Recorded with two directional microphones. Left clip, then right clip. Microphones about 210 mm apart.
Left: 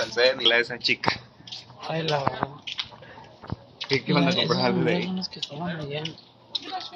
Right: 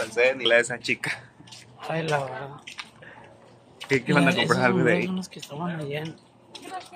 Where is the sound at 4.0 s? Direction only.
30° right (ahead or behind).